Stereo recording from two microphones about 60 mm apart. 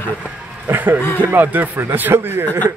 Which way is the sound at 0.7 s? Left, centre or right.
Right.